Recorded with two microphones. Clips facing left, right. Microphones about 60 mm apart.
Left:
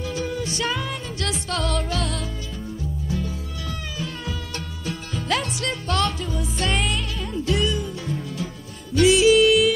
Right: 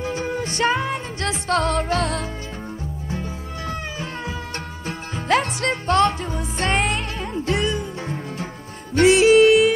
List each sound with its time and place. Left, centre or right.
0.0 s music: right
3.1 s music: right